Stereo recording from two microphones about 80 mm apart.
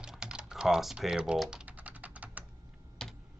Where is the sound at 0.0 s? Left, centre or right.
Centre.